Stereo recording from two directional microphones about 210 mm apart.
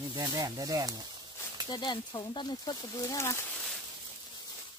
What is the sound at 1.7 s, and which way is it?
Speech, 20° left (ahead or behind).